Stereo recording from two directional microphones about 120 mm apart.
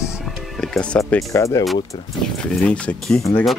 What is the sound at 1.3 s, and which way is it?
Speech, 25° left (ahead or behind).